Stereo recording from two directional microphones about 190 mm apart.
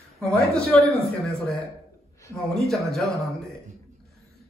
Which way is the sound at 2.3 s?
Centre (ahead or behind).